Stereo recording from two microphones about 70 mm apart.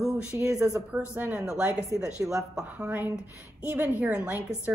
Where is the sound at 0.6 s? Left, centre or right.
Right.